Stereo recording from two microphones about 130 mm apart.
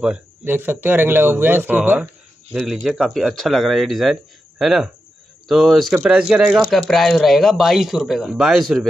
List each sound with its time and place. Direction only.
0.4 s speech: 15° right (ahead or behind)